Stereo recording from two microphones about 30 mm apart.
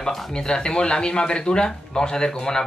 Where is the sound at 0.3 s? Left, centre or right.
Left.